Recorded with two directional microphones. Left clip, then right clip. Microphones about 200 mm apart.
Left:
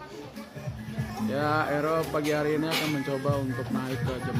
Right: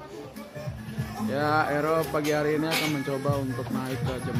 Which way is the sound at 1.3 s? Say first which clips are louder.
Right 2 dB; 5° right (ahead or behind).